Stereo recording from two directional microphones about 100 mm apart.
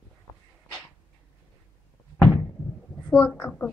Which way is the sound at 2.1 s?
25° left (ahead or behind).